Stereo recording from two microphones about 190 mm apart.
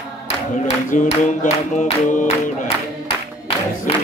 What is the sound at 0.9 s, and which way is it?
Speech, 40° left (ahead or behind).